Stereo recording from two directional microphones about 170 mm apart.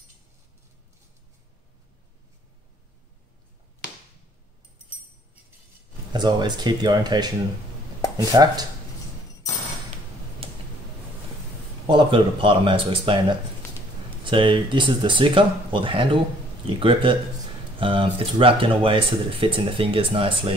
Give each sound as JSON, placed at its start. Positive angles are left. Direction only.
{"t": 6.1, "sound": "speech", "side_deg": -25}
{"t": 10.4, "sound": "a sound", "side_deg": -35}
{"t": 11.9, "sound": "speech", "side_deg": -30}
{"t": 14.3, "sound": "speech", "side_deg": -30}